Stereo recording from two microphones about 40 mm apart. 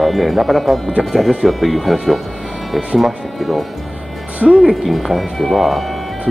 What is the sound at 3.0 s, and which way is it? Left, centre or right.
Speech, centre.